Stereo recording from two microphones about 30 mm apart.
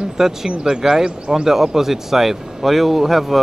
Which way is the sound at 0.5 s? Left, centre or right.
Right.